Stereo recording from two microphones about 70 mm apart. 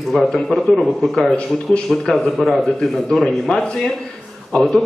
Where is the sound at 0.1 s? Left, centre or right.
Centre.